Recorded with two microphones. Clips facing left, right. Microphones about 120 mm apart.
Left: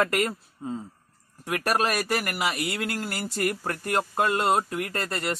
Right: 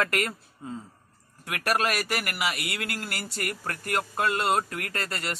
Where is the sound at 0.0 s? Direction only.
15° left (ahead or behind).